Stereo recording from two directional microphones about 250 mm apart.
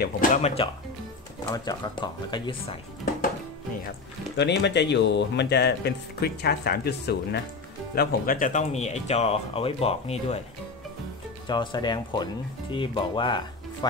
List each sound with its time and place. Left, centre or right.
0.0 s speech: left
1.5 s speech: centre
4.4 s speech: left
11.4 s speech: centre